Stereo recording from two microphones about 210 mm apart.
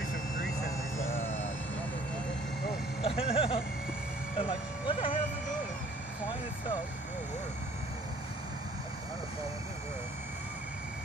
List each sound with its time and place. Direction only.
3.0 s speech: 25° left (ahead or behind)
4.4 s vehicle: 25° left (ahead or behind)